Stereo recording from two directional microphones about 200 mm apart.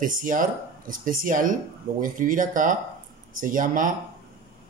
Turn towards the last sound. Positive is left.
turn(degrees=-40)  # may be behind; listen again after turning